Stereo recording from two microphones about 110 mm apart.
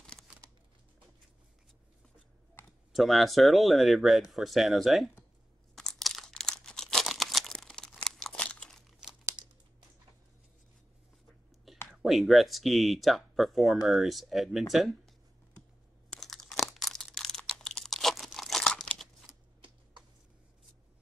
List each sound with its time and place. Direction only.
0.3 s a sound: 10° right (ahead or behind)
2.9 s speech: centre (ahead or behind)
5.8 s crumpling: centre (ahead or behind)
9.4 s crumpling: 40° right (ahead or behind)
11.9 s speech: centre (ahead or behind)
16.1 s crumpling: 5° left (ahead or behind)